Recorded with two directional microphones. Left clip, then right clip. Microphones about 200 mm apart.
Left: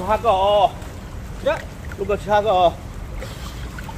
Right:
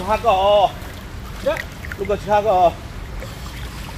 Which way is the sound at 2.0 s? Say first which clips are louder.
Right 1 dB; 30° right (ahead or behind).